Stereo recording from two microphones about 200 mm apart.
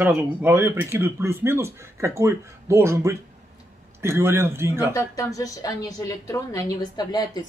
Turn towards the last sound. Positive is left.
turn(degrees=20)  # may be behind; listen again after turning